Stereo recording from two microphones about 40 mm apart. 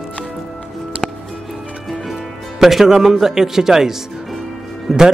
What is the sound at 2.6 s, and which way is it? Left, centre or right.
Speech, centre.